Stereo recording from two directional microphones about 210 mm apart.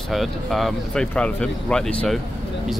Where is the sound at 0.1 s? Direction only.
Centre (ahead or behind).